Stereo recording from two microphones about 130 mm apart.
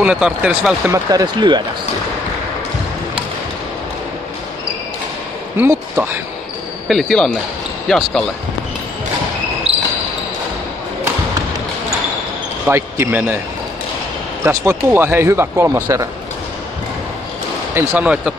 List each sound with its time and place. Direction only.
0.0 s speech: 5° right (ahead or behind)
0.9 s speech: 30° right (ahead or behind)
5.6 s speech: 15° right (ahead or behind)
6.9 s speech: 5° left (ahead or behind)
9.7 s basketball bounce: 50° right (ahead or behind)
12.6 s speech: 20° right (ahead or behind)
14.4 s speech: 20° right (ahead or behind)
17.7 s speech: 10° right (ahead or behind)